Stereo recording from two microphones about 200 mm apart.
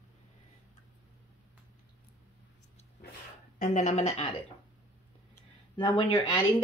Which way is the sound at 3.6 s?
40° left (ahead or behind).